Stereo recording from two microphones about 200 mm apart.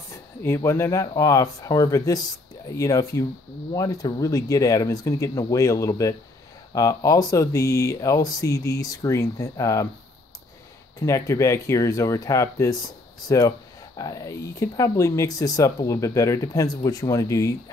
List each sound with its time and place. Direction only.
0.1 s speech: 15° left (ahead or behind)
11.0 s speech: 15° left (ahead or behind)
13.9 s speech: 15° left (ahead or behind)